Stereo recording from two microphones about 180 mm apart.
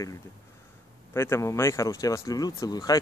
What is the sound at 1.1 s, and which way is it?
Speech, 15° left (ahead or behind).